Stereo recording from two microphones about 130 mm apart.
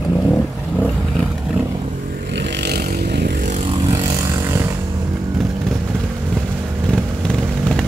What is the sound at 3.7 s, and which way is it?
Vehicle, 40° right (ahead or behind).